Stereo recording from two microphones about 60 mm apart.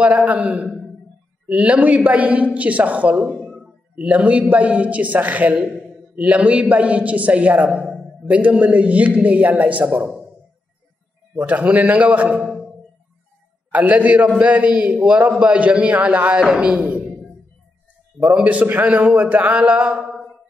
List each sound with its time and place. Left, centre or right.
0.0 s a man's voice: right
3.3 s a sound: centre
4.0 s a man's voice: right
11.4 s a man's voice: right
13.7 s a man's voice: right
18.2 s a man's voice: right